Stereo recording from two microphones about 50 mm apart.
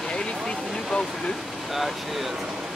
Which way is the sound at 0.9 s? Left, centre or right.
Centre.